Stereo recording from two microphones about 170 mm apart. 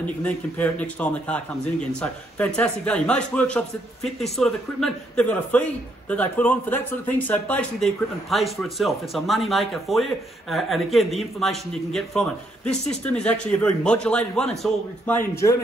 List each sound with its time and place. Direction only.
0.0 s a man's voice: 10° left (ahead or behind)